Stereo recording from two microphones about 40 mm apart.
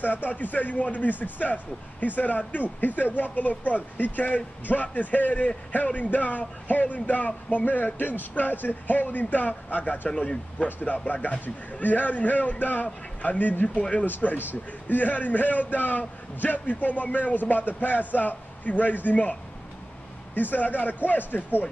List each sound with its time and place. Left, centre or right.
0.0 s a man's voice: left
7.6 s a man's voice: left
10.0 s speech: left
11.4 s a man's voice: left
14.0 s a man's voice: left
20.3 s a man's voice: left